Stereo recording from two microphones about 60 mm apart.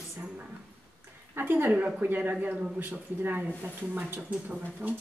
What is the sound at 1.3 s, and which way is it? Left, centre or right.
Speech, right.